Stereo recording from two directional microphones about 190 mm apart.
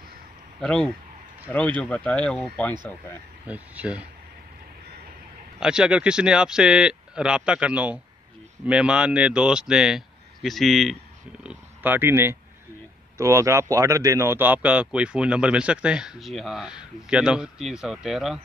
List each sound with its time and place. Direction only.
0.6 s speech: 5° left (ahead or behind)
3.4 s speech: 10° right (ahead or behind)
5.6 s speech: 5° right (ahead or behind)
11.4 s roaring cats: 10° right (ahead or behind)
13.2 s speech: 15° right (ahead or behind)